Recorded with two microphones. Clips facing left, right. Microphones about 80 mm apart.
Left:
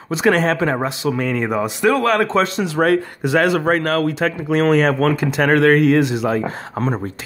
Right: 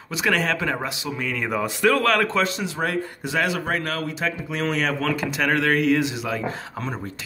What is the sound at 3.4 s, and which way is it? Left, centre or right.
Speech, left.